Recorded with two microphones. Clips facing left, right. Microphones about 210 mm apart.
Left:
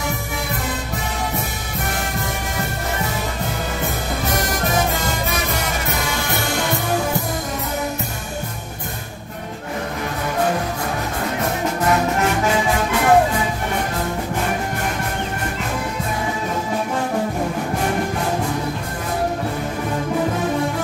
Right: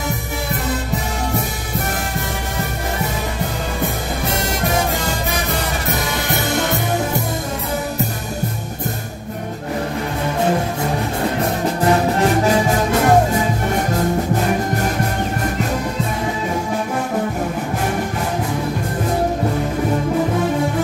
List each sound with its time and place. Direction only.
6.3 s music: 20° right (ahead or behind)
11.8 s music: 35° right (ahead or behind)